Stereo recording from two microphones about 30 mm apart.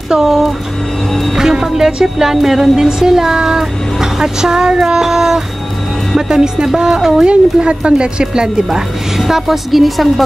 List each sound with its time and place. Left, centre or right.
0.2 s speech: centre
1.4 s music: centre
2.3 s speech: centre; by 6.7 s right
7.1 s a woman's voice: right
9.2 s a woman's voice: centre